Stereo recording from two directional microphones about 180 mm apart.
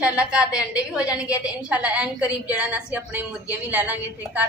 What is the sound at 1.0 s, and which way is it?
Speech, 20° left (ahead or behind).